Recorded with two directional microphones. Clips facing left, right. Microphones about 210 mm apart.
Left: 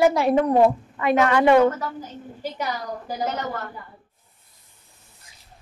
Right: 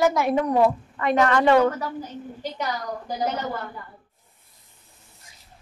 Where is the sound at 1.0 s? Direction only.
5° left (ahead or behind).